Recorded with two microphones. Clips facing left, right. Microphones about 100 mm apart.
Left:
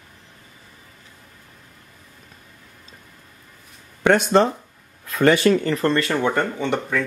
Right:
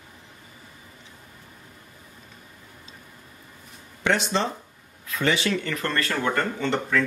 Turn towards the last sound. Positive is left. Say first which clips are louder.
# left 1 dB
turn(degrees=15)  # may be behind; listen again after turning